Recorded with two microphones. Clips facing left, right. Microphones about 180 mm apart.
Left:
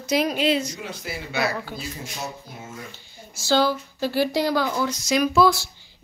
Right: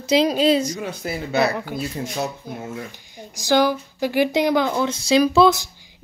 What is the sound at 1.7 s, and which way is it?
Speech, 60° right (ahead or behind).